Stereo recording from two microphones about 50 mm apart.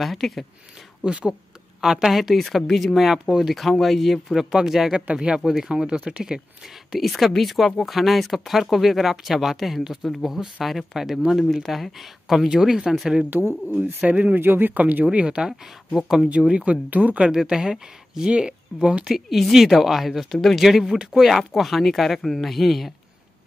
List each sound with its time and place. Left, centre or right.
0.0 s speech: centre
1.0 s speech: centre
4.4 s speech: centre
4.9 s speech: centre
6.9 s speech: centre
13.3 s speech: right
14.4 s speech: right
15.0 s speech: centre
16.4 s speech: centre
16.9 s speech: right
17.2 s speech: centre